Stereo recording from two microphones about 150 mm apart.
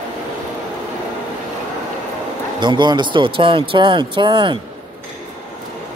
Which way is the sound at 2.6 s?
30° right (ahead or behind).